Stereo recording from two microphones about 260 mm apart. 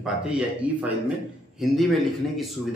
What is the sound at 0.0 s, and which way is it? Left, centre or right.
A man's voice, centre.